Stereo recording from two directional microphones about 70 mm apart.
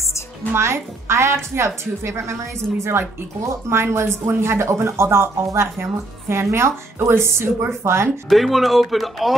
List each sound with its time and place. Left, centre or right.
0.5 s speech: right
8.3 s speech: centre